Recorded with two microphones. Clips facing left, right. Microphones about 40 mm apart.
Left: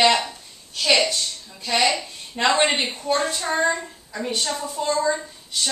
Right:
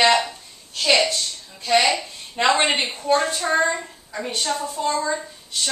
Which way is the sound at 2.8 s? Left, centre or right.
Centre.